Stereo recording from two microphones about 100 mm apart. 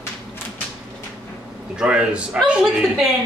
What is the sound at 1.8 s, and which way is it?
Speech, 10° right (ahead or behind).